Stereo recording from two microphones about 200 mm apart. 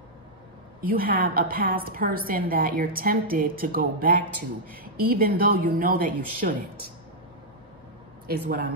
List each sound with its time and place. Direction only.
0.8 s speech: 45° right (ahead or behind)
8.3 s speech: 45° right (ahead or behind)